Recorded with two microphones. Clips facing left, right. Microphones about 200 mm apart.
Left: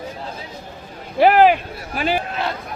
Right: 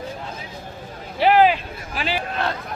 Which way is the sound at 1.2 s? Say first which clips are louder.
Left 3 dB; 50° left (ahead or behind).